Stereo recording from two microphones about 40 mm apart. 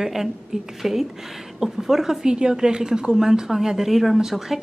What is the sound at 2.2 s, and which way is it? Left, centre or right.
A woman's voice, centre.